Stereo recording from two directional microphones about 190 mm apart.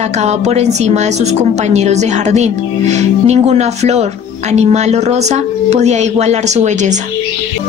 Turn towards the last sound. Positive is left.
turn(degrees=-40)  # may be behind; listen again after turning